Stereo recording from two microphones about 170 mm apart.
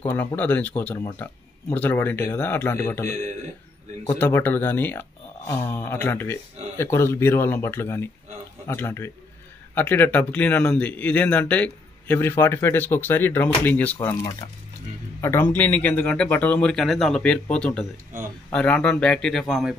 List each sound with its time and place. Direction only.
0.3 s speech: 10° left (ahead or behind)
4.1 s speech: 10° left (ahead or behind)
13.9 s speech: 25° left (ahead or behind); by 19.7 s centre (ahead or behind)